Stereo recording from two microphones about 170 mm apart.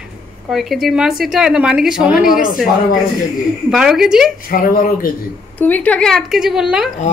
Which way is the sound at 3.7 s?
5° right (ahead or behind).